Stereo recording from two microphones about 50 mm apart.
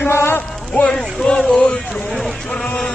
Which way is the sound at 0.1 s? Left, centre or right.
Left.